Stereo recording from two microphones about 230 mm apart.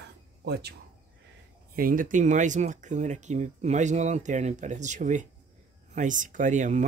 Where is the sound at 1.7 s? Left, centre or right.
Right.